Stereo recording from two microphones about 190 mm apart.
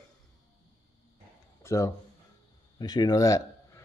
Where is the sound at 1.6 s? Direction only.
15° left (ahead or behind).